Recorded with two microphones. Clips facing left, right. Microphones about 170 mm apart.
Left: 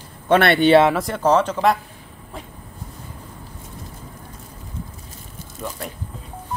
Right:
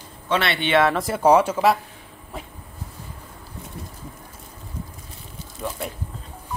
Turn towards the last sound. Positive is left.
turn(degrees=0)  # may be behind; listen again after turning